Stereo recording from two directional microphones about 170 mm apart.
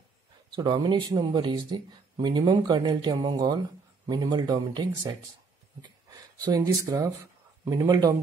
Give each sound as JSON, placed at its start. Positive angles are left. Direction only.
{"t": 0.6, "sound": "speech", "side_deg": -25}